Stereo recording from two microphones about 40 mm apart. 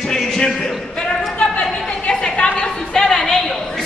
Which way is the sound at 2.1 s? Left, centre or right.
Left.